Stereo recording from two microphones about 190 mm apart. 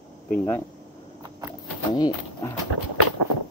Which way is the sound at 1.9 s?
20° left (ahead or behind).